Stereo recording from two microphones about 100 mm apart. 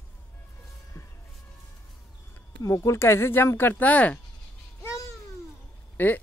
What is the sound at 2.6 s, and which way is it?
Speech, 30° left (ahead or behind).